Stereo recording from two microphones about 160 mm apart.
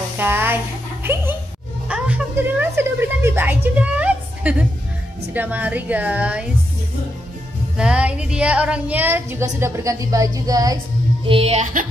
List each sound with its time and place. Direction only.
0.2 s speech: 15° right (ahead or behind)
1.9 s a woman's voice: 10° right (ahead or behind)
7.7 s speech: 5° right (ahead or behind); by 10.8 s 20° right (ahead or behind)
11.2 s speech: 35° right (ahead or behind); by 11.9 s 55° right (ahead or behind)